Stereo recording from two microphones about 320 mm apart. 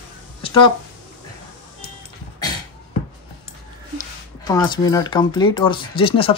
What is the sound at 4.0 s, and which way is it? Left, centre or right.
Speech, centre.